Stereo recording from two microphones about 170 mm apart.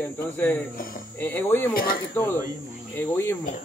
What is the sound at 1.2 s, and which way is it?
Speech, 10° left (ahead or behind).